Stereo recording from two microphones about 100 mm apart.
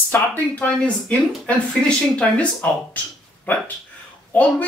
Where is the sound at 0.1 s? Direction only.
20° left (ahead or behind).